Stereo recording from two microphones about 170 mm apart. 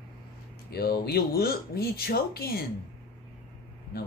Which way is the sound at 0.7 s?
70° left (ahead or behind).